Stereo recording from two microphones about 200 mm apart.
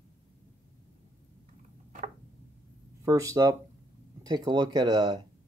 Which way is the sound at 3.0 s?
15° right (ahead or behind).